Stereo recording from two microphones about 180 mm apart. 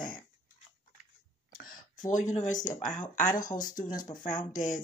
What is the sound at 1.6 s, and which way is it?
Speech, 50° left (ahead or behind).